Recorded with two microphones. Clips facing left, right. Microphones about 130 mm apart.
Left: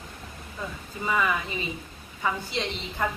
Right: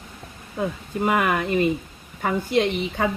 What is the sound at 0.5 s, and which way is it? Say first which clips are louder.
A woman's voice: right 11 dB; 65° right (ahead or behind).